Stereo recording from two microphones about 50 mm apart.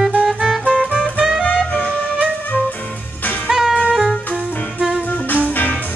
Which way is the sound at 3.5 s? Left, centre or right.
Centre.